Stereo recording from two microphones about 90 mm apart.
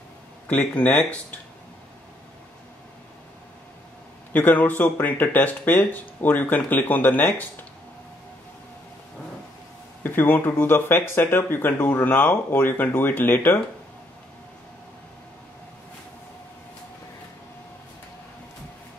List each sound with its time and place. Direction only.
0.5 s speech: 15° left (ahead or behind)
4.3 s speech: 20° left (ahead or behind)
10.0 s speech: 25° left (ahead or behind)